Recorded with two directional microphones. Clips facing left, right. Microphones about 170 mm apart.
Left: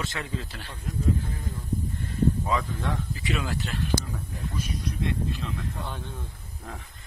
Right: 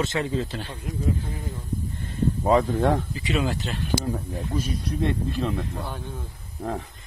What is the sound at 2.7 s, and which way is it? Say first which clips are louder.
Speech: right 10 dB; 50° right (ahead or behind).